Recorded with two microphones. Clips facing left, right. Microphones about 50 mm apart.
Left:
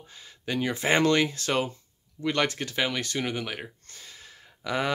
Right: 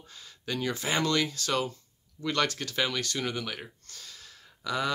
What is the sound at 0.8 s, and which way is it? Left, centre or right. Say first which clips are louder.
Speech: left 6 dB; left.